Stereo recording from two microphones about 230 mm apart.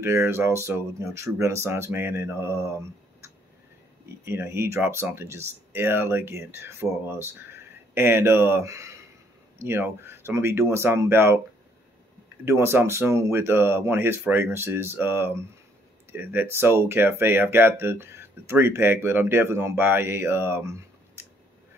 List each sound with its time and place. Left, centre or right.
0.0 s speech: centre
12.4 s speech: centre